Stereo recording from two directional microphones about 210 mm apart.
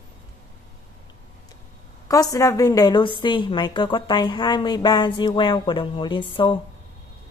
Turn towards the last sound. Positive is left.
turn(degrees=25)  # may be behind; listen again after turning